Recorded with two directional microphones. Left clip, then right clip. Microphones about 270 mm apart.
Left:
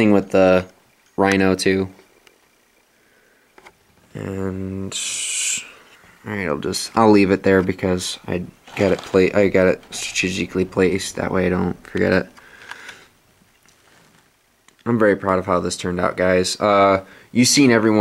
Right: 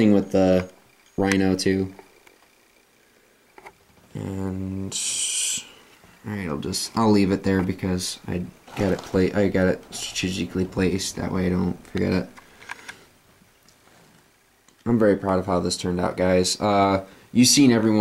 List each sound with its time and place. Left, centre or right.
0.1 s speech: centre
4.1 s owl: centre
6.2 s speech: centre
12.7 s a sound: centre
14.8 s speech: centre